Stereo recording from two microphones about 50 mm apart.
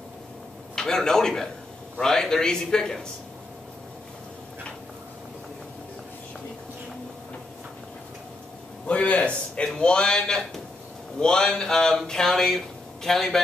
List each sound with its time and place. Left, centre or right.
0.7 s a man's voice: centre
8.8 s a sound: left
9.8 s a man's voice: centre